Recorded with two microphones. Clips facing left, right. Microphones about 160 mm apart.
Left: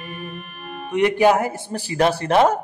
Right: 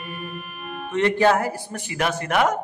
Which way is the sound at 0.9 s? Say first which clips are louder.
Left 2 dB; 15° left (ahead or behind).